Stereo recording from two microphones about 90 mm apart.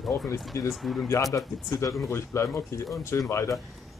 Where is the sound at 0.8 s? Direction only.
5° left (ahead or behind).